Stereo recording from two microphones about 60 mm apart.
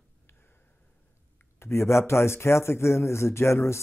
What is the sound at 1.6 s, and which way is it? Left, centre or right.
A man's voice, left.